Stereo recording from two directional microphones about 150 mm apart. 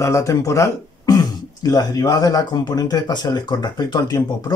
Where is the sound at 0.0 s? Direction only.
20° left (ahead or behind).